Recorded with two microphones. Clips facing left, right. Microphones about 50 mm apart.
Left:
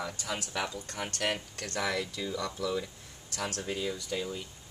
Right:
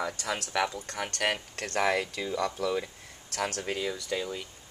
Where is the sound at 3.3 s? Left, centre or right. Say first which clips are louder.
Right 3 dB; right.